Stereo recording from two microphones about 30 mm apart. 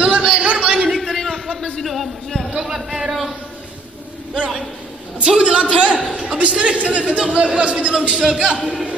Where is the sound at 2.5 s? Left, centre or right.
Centre.